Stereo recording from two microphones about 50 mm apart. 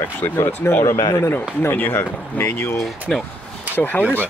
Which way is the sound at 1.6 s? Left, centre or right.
Left.